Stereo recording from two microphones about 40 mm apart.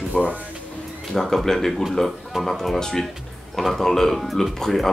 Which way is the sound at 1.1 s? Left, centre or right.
Centre.